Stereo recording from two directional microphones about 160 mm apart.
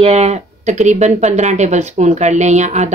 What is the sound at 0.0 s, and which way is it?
Speech, 45° right (ahead or behind).